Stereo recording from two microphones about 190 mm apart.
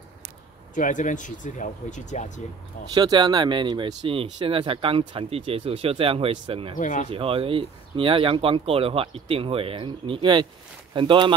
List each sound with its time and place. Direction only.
0.7 s speech: 40° left (ahead or behind)
2.9 s speech: 25° right (ahead or behind)
6.8 s speech: 40° left (ahead or behind)
7.1 s speech: 30° right (ahead or behind)